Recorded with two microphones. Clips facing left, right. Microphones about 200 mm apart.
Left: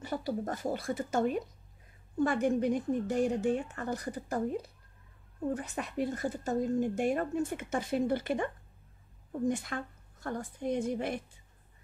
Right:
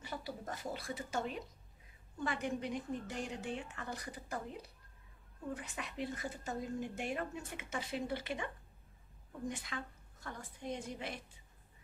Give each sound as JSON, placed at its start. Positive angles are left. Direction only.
{"t": 0.0, "sound": "speech", "side_deg": 45}
{"t": 9.5, "sound": "speech", "side_deg": 50}